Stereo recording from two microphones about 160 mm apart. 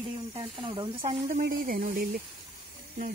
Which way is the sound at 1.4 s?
60° right (ahead or behind).